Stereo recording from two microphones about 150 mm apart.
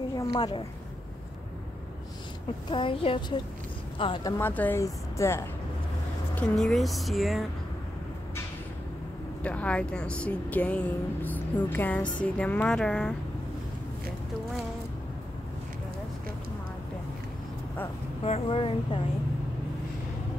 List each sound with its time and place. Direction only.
0.1 s speech: 25° left (ahead or behind)
2.7 s speech: 35° left (ahead or behind)
4.4 s speech: 15° left (ahead or behind)
6.3 s speech: 5° left (ahead or behind)
9.4 s speech: 10° left (ahead or behind)
18.2 s speech: 40° left (ahead or behind)